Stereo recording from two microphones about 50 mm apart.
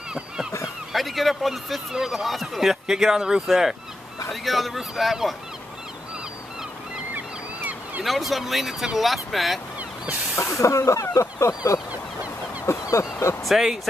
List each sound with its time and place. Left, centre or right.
0.9 s a man's voice: centre
7.2 s honk: right
8.0 s a man's voice: centre
10.6 s speech: left
11.9 s fowl: right
12.6 s a sound: left
13.4 s a man's voice: centre